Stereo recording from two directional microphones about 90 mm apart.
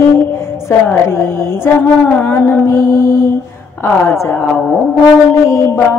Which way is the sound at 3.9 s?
30° left (ahead or behind).